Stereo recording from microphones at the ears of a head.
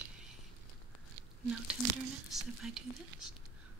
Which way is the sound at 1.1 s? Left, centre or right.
Right.